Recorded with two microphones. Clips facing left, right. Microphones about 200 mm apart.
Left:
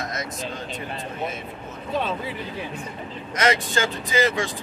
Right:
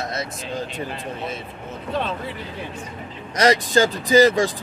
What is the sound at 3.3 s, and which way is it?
Speech, 35° right (ahead or behind).